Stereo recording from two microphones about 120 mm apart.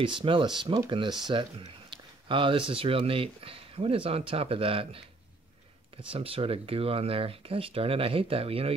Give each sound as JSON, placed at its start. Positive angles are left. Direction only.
{"t": 0.0, "sound": "speech", "side_deg": -45}
{"t": 6.0, "sound": "speech", "side_deg": -50}